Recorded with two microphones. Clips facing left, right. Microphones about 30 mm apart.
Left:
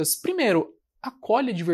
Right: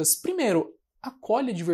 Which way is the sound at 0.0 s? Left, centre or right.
Left.